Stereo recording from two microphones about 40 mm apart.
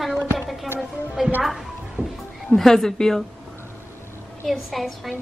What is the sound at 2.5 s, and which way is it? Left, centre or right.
Speech, centre.